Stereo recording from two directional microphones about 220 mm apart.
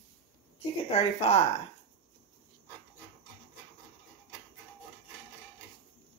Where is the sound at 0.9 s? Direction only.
25° left (ahead or behind).